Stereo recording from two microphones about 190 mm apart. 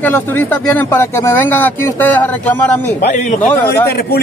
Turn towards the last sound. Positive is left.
turn(degrees=10)  # may be behind; listen again after turning